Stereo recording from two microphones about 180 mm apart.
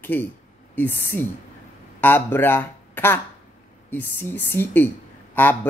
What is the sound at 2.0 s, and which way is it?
Speech, 10° left (ahead or behind).